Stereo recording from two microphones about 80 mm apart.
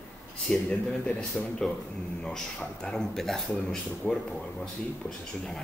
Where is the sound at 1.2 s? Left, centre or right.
Centre.